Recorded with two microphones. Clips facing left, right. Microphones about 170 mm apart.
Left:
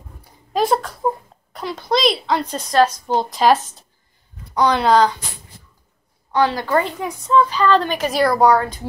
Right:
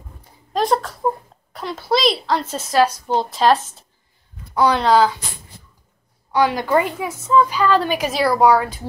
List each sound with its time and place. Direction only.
0.2 s a sound: 5° left (ahead or behind)
1.5 s speech: centre (ahead or behind)
6.3 s a woman's voice: 15° right (ahead or behind)